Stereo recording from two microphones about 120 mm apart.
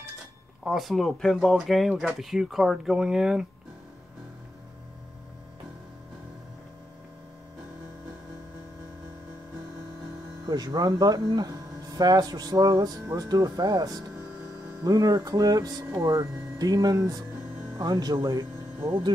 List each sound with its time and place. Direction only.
0.7 s speech: centre (ahead or behind)
10.4 s speech: 35° right (ahead or behind)